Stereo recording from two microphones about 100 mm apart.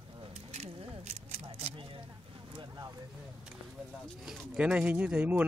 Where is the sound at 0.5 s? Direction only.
90° right.